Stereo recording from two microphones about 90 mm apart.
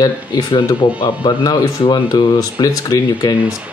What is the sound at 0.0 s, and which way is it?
Speech, 50° left (ahead or behind).